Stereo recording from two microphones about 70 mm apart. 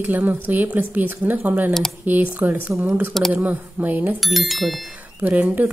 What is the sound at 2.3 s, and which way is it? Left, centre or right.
A woman's voice, right.